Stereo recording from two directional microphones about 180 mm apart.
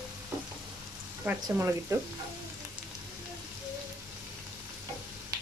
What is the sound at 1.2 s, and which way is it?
Speech, 15° right (ahead or behind).